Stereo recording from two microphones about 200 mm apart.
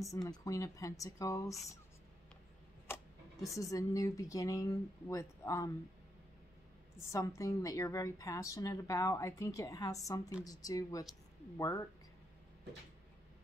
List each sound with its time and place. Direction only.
0.0 s a woman's voice: 15° left (ahead or behind)
2.9 s a sound: 10° left (ahead or behind)
3.5 s a woman's voice: 15° left (ahead or behind)
7.1 s a woman's voice: 15° left (ahead or behind)